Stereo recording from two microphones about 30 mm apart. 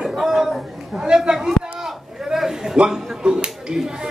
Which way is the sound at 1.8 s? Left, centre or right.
Centre.